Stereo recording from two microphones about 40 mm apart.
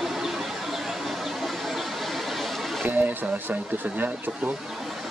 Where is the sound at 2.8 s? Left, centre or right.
Right.